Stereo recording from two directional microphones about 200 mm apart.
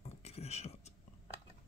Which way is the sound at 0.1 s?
30° left (ahead or behind).